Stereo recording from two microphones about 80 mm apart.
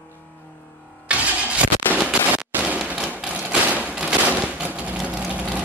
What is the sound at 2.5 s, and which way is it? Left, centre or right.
Rain, centre.